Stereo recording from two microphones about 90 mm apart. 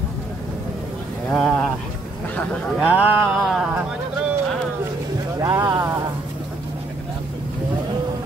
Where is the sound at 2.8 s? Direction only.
15° right (ahead or behind).